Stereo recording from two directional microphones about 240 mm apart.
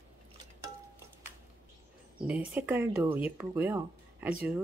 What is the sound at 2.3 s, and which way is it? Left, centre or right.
Speech, centre.